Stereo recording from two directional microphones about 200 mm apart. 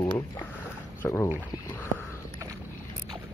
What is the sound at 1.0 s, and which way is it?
Speech, 15° left (ahead or behind).